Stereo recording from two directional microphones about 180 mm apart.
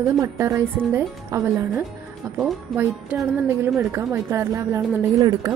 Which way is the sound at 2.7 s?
Centre (ahead or behind).